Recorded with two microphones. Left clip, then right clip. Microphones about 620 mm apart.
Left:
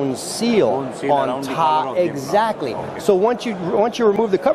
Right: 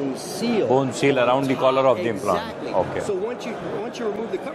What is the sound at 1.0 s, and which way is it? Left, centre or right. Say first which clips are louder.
Speech: left 5 dB; right.